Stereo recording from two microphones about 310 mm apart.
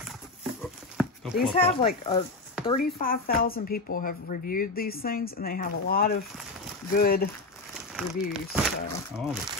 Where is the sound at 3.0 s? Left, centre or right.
Left.